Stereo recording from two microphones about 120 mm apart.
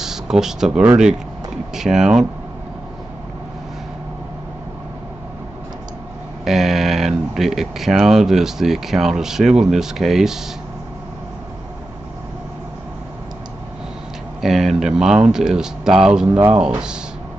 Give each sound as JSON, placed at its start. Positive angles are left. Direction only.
{"t": 0.0, "sound": "speech", "side_deg": -5}
{"t": 6.4, "sound": "speech", "side_deg": -5}
{"t": 14.4, "sound": "speech", "side_deg": -5}